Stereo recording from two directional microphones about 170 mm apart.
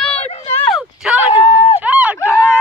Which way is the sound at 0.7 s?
5° right (ahead or behind).